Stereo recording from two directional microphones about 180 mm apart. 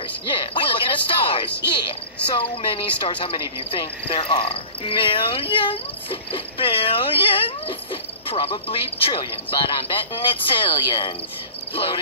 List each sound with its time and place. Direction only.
0.3 s a sound: 30° left (ahead or behind)
1.7 s speech: 30° left (ahead or behind)
11.7 s cricket: 30° left (ahead or behind)